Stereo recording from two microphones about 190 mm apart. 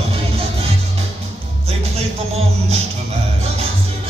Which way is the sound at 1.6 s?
30° right (ahead or behind).